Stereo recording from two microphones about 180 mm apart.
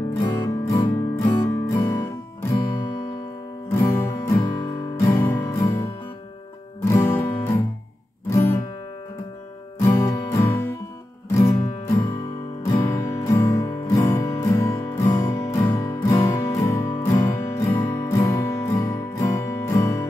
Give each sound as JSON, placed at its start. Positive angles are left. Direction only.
{"t": 0.1, "sound": "music", "side_deg": 20}
{"t": 3.7, "sound": "music", "side_deg": 15}
{"t": 9.8, "sound": "music", "side_deg": 15}